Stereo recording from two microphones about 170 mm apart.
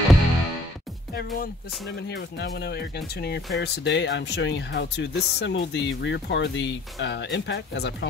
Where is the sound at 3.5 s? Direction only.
90° left.